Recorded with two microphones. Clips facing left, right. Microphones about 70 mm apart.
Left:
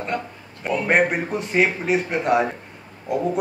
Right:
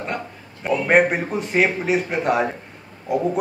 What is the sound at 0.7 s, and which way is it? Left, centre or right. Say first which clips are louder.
A man's voice: right 2 dB; centre.